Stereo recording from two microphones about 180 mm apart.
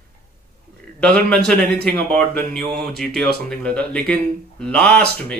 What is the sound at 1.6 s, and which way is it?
Speech, 60° right (ahead or behind).